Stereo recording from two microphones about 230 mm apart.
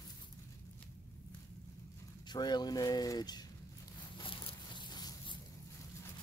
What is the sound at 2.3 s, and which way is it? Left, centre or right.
Speech, centre.